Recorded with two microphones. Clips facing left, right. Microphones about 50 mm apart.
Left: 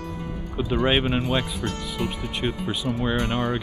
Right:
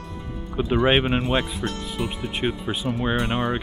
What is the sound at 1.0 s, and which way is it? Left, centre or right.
Speech, centre.